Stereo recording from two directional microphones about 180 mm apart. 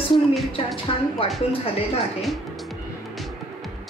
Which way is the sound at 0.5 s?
30° left (ahead or behind).